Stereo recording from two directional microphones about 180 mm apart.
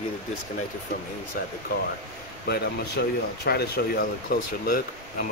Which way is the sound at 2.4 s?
65° left (ahead or behind).